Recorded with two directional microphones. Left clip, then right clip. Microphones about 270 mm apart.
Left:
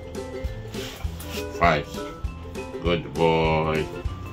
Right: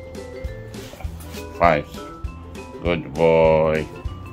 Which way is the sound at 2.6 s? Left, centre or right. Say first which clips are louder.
Right 1 dB; centre.